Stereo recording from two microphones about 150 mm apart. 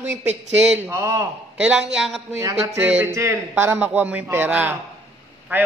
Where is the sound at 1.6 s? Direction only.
5° right (ahead or behind).